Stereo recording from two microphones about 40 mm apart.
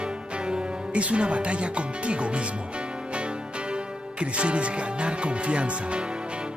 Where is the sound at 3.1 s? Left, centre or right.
Right.